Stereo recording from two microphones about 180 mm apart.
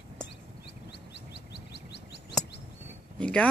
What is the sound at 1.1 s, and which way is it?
Bird, 70° left (ahead or behind).